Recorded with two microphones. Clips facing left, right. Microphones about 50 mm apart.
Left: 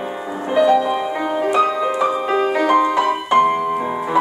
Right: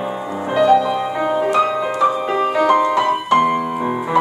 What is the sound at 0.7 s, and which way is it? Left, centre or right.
Music, centre.